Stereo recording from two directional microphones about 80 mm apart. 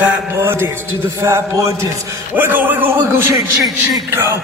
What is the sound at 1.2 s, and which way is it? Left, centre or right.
Speech, right.